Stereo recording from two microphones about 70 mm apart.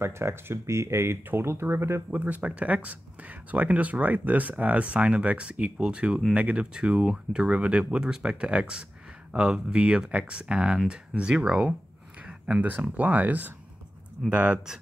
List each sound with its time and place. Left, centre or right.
0.0 s speech: right
2.0 s speech: right
12.2 s a sound: centre
12.8 s speech: right